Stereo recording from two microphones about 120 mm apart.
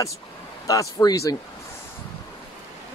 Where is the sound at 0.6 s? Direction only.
30° left (ahead or behind).